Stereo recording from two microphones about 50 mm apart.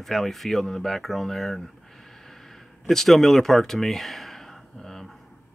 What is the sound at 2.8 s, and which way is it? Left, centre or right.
Speech, centre.